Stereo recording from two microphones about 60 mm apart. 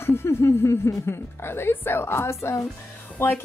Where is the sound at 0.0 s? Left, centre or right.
Left.